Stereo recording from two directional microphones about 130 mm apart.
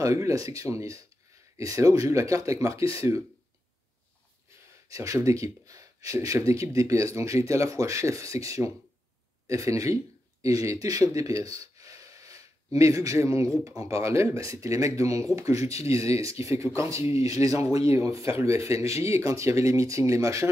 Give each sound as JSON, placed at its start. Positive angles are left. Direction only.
{"t": 0.0, "sound": "speech", "side_deg": -25}
{"t": 4.8, "sound": "speech", "side_deg": -25}